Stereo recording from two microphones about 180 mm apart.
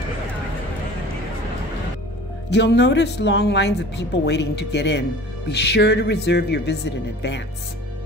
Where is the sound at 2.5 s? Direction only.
70° left (ahead or behind).